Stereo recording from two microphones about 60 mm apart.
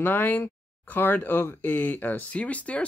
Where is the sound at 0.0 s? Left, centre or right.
Left.